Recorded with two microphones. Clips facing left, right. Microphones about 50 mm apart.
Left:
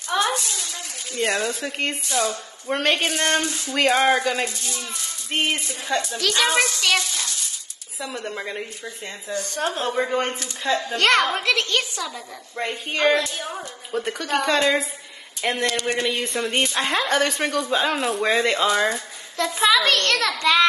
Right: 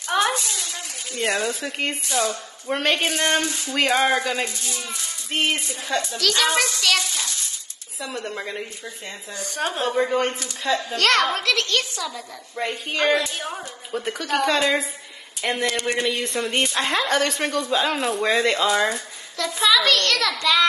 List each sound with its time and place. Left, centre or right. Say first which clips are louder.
0.1 s a sound: right 1 dB; right
1.2 s speech: even; centre
5.9 s a woman's voice: even; left
8.0 s speech: even; centre
9.3 s a woman's voice: left 2 dB; right
9.9 s speech: right 2 dB; centre
11.0 s a woman's voice: left 1 dB; left
12.5 s speech: even; centre
15.6 s a woman's voice: even; right
16.0 s speech: even; centre
19.3 s a woman's voice: left 1 dB; left